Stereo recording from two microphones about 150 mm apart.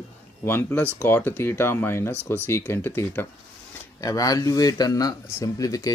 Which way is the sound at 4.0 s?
25° left (ahead or behind).